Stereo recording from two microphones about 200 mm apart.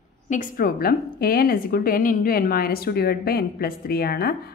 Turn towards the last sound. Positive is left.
turn(degrees=50)  # may be behind; listen again after turning